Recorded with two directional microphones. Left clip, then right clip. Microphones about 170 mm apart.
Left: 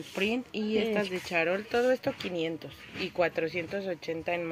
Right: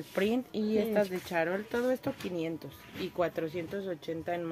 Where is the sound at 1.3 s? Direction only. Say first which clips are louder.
Left 3 dB; 20° right (ahead or behind).